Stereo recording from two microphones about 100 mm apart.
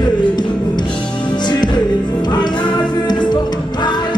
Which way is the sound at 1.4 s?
45° left (ahead or behind).